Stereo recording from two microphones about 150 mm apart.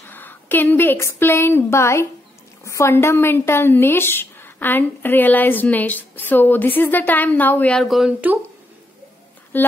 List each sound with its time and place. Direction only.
0.0 s a sound: 15° left (ahead or behind)
1.2 s a woman's voice: 15° left (ahead or behind); by 8.4 s 5° right (ahead or behind)
9.5 s a woman's voice: 15° left (ahead or behind)